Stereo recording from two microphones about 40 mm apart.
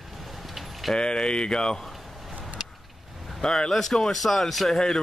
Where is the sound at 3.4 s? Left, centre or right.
Centre.